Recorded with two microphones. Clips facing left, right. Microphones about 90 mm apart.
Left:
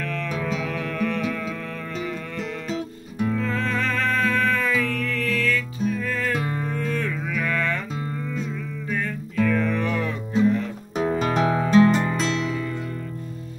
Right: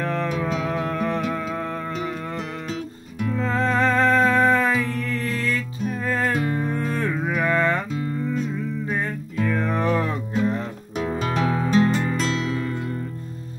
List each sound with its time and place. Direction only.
0.0 s music: 35° right (ahead or behind)
3.3 s music: 30° right (ahead or behind)
8.9 s music: 30° right (ahead or behind)
11.4 s music: 20° left (ahead or behind)